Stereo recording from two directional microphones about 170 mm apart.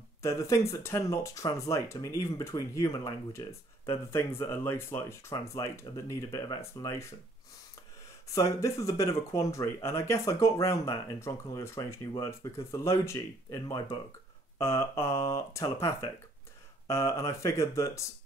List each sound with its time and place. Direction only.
0.2 s speech: 15° left (ahead or behind)
8.3 s speech: 15° left (ahead or behind)